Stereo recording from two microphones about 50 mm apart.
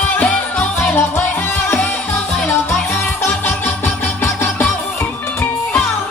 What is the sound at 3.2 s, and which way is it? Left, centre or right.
Music, left.